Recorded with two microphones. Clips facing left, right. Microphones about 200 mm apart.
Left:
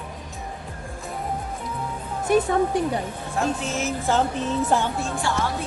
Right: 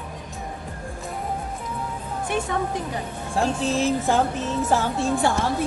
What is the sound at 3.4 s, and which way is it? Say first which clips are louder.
Speech: right 3 dB; 35° right (ahead or behind).